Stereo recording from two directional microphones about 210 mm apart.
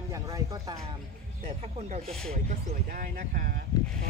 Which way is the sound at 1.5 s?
30° right (ahead or behind).